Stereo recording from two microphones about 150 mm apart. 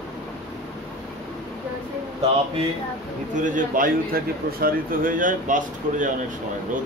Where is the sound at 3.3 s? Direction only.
60° right (ahead or behind).